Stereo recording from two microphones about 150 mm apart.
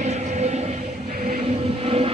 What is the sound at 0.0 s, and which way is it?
Train, 50° right (ahead or behind).